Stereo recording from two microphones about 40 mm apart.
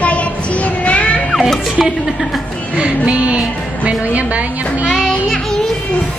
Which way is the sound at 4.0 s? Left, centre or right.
Right.